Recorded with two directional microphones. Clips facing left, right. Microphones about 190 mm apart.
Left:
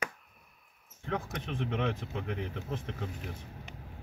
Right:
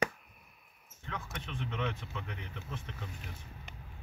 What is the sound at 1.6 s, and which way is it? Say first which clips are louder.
Speech: left 5 dB; 60° left (ahead or behind).